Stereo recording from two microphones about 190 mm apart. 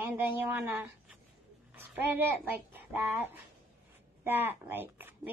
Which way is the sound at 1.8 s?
10° right (ahead or behind).